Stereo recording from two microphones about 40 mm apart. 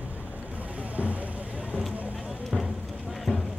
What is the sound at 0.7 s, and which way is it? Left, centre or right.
Boat, right.